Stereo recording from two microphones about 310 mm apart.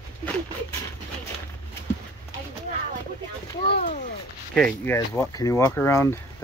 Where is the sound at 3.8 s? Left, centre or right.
Left.